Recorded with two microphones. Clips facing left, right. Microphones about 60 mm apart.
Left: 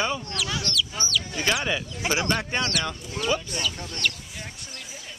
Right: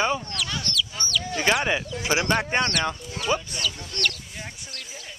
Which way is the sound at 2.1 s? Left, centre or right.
Centre.